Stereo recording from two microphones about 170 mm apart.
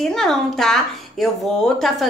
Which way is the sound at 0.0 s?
Centre (ahead or behind).